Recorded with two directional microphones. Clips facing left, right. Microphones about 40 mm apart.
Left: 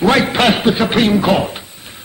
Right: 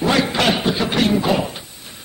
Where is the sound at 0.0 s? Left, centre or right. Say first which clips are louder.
Left 4 dB; left.